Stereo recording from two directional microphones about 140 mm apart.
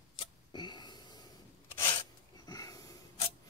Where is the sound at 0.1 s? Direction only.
35° left (ahead or behind).